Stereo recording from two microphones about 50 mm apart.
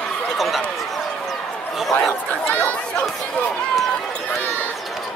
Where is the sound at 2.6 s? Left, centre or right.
Left.